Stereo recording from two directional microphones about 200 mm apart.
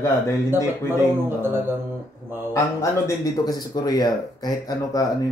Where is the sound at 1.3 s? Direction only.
10° right (ahead or behind).